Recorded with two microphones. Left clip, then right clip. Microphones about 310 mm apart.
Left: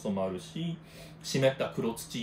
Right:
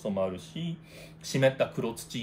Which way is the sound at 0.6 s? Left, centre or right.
Centre.